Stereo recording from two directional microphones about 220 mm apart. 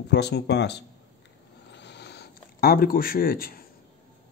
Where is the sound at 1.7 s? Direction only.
50° left (ahead or behind).